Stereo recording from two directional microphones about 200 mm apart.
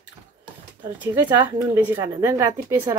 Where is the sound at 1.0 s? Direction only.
10° right (ahead or behind).